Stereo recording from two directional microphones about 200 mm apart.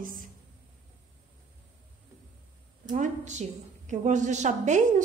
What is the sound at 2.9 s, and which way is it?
A woman's voice, 40° right (ahead or behind).